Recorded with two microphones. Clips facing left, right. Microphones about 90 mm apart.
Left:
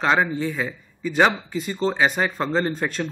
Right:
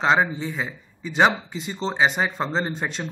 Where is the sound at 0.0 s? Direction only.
15° right (ahead or behind).